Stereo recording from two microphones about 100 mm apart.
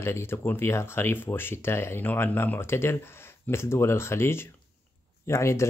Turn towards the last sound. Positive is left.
turn(degrees=30)  # may be behind; listen again after turning